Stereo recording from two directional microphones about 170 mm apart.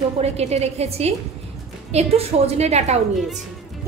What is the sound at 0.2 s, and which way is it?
A woman's voice, 40° right (ahead or behind).